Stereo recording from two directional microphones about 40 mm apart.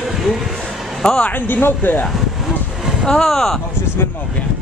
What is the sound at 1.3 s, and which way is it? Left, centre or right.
Speech, left.